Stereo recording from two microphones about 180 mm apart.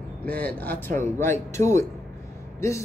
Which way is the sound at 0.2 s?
10° left (ahead or behind).